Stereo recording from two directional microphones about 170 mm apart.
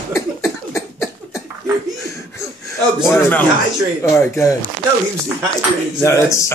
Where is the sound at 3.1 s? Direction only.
10° left (ahead or behind).